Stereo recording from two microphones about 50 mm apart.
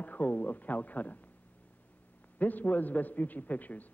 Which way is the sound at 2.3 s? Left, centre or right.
Left.